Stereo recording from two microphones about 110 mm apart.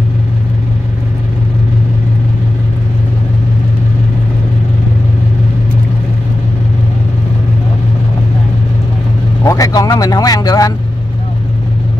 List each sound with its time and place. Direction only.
9.4 s speech: 30° left (ahead or behind)